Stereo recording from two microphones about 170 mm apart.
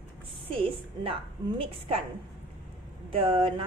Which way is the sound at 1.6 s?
35° right (ahead or behind).